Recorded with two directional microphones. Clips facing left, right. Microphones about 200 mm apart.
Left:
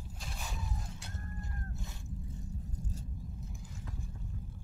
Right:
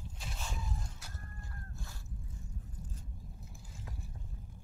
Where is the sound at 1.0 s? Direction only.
25° left (ahead or behind).